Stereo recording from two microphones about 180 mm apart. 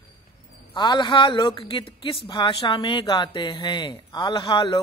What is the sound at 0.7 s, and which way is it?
A woman's voice, 25° left (ahead or behind).